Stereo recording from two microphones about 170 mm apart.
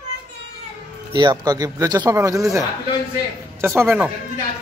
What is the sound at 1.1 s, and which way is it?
Speech, 25° right (ahead or behind).